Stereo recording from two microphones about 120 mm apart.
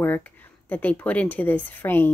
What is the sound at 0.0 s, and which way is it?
Speech, 15° left (ahead or behind).